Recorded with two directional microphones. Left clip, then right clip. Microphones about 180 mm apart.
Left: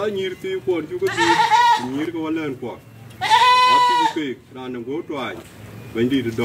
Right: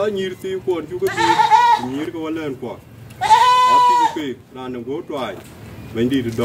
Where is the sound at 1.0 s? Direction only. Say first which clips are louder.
Right 2 dB; 45° right (ahead or behind).